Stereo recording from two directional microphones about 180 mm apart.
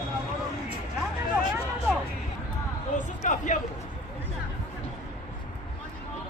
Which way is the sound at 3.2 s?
40° left (ahead or behind).